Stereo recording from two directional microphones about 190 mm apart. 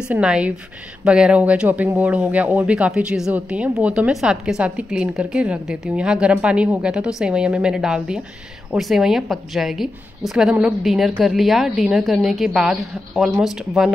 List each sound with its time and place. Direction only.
0.1 s a woman's voice: 5° right (ahead or behind)